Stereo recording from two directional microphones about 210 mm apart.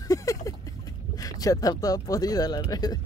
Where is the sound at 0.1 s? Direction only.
15° left (ahead or behind).